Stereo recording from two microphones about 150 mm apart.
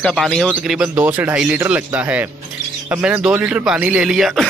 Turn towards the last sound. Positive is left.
turn(degrees=-5)  # may be behind; listen again after turning